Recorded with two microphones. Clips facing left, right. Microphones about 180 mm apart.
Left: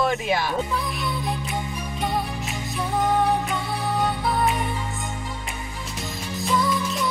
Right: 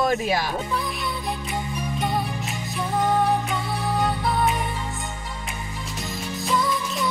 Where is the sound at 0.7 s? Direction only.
Centre (ahead or behind).